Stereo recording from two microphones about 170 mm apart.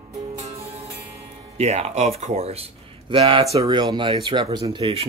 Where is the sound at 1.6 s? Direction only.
40° right (ahead or behind).